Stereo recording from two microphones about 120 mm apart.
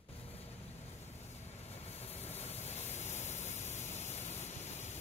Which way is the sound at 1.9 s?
60° left (ahead or behind).